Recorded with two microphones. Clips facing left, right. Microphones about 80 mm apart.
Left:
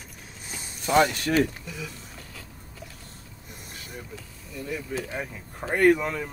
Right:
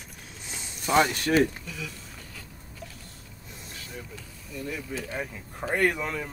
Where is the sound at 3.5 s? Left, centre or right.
Left.